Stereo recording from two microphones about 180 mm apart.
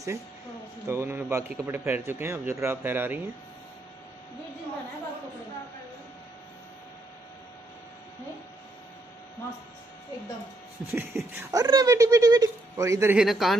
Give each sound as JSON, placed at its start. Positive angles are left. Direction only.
{"t": 0.8, "sound": "speech", "side_deg": -15}
{"t": 10.9, "sound": "speech", "side_deg": -10}
{"t": 13.2, "sound": "speech", "side_deg": 0}